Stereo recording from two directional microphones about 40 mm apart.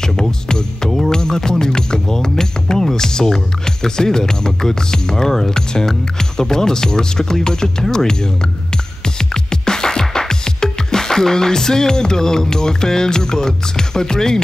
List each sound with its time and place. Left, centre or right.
0.0 s music: centre
0.9 s speech: centre
9.0 s music: centre